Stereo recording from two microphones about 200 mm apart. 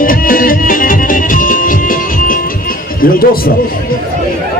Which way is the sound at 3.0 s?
45° left (ahead or behind).